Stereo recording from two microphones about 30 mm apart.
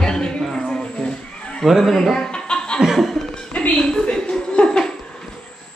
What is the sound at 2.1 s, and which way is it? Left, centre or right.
Chuckle, left.